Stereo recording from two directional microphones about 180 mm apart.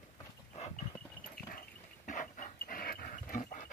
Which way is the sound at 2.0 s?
45° left (ahead or behind).